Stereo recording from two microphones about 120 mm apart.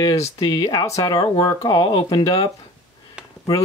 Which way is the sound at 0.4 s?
35° left (ahead or behind).